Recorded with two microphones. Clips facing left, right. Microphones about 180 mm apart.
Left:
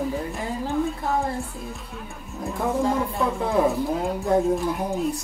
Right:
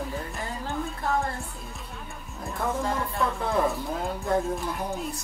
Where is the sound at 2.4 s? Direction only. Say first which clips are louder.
Left 5 dB; 15° left (ahead or behind).